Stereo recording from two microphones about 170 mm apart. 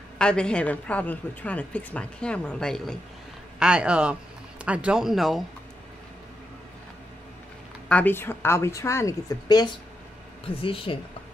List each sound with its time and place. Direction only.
0.2 s a woman's voice: 5° left (ahead or behind)
7.9 s a woman's voice: 10° left (ahead or behind); by 11.0 s 30° left (ahead or behind)